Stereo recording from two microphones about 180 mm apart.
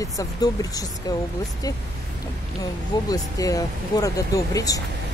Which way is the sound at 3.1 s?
20° left (ahead or behind).